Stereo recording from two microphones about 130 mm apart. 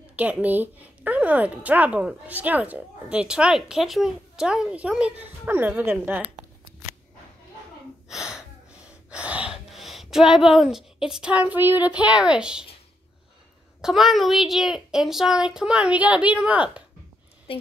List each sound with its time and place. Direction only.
0.1 s a woman's voice: 10° right (ahead or behind)
8.1 s speech: 5° right (ahead or behind)
13.7 s a child's voice: 5° right (ahead or behind)
17.5 s speech: 45° left (ahead or behind)